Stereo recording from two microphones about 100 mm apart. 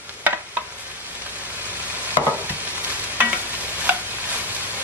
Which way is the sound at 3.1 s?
15° right (ahead or behind).